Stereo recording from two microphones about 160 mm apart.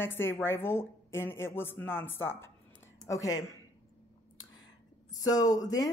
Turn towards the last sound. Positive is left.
turn(degrees=20)  # may be behind; listen again after turning